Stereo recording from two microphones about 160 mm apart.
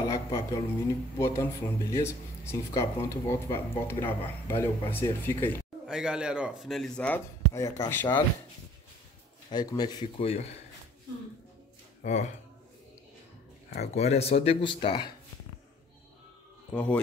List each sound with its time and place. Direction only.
0.1 s speech: 20° left (ahead or behind)
5.9 s speech: 5° right (ahead or behind)
7.5 s speech: 20° left (ahead or behind)
9.5 s speech: 25° left (ahead or behind)
10.2 s speech: 40° left (ahead or behind)
12.0 s speech: 45° left (ahead or behind)
13.7 s speech: 40° left (ahead or behind)